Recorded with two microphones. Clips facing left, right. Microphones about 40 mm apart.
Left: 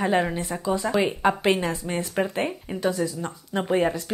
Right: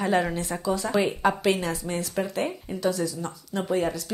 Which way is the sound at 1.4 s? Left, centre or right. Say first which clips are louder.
Left 2 dB; left.